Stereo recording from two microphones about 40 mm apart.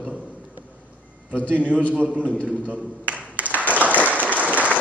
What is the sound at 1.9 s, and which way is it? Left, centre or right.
Speech, right.